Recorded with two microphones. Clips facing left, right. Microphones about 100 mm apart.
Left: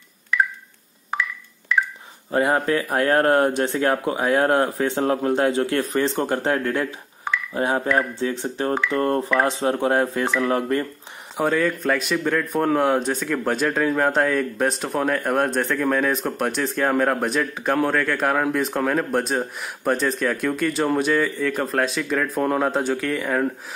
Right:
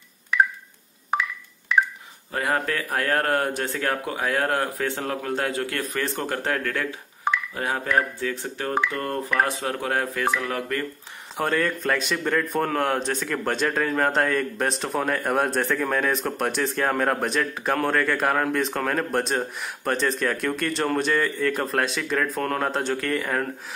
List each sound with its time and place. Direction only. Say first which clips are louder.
2.3 s speech: left 6 dB; 20° left (ahead or behind)
11.3 s speech: left 3 dB; centre (ahead or behind)